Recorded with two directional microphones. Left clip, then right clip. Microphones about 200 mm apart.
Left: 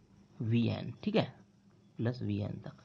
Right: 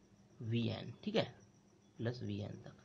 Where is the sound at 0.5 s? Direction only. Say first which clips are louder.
Left 6 dB; 30° left (ahead or behind).